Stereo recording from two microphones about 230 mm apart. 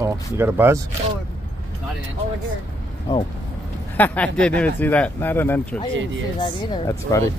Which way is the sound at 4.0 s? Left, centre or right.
Centre.